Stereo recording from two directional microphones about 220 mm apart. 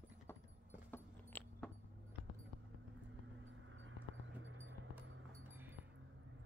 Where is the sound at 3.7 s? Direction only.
60° right (ahead or behind).